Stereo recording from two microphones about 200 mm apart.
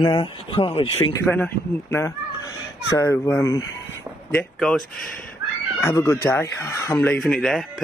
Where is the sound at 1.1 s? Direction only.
10° left (ahead or behind).